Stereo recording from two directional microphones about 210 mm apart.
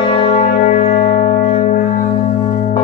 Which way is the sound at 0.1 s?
25° left (ahead or behind).